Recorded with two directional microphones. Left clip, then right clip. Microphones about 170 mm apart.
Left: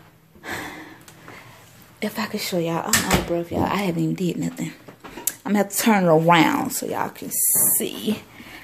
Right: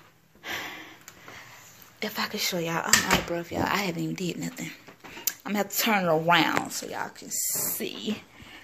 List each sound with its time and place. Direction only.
0.4 s gasp: 25° left (ahead or behind)
2.0 s speech: 10° left (ahead or behind)
5.2 s speech: 25° left (ahead or behind)
7.8 s speech: 5° left (ahead or behind)